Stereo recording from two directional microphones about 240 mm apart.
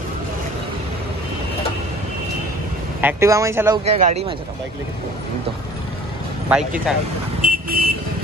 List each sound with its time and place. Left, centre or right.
3.0 s speech: centre
3.8 s speech: right
6.5 s speech: centre
7.4 s vehicle: right